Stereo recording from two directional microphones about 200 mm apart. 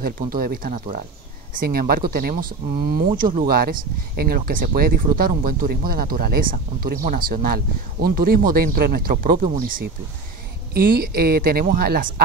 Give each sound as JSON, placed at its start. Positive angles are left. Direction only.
{"t": 0.0, "sound": "speech", "side_deg": -45}